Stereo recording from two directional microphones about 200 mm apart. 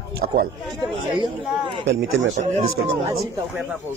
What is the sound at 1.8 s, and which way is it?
Speech, 65° right (ahead or behind).